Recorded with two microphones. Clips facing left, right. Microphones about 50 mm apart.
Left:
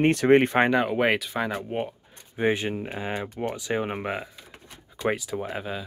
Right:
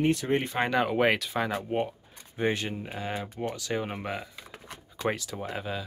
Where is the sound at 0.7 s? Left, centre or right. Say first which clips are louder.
Left 2 dB; centre.